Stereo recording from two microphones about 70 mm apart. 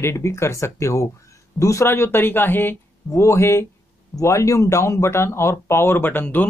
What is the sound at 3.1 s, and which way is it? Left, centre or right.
Speech, left.